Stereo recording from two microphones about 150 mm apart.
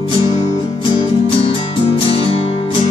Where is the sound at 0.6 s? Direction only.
35° left (ahead or behind).